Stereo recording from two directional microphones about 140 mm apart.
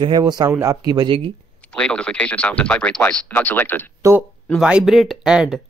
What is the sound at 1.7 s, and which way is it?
Speech, 10° left (ahead or behind).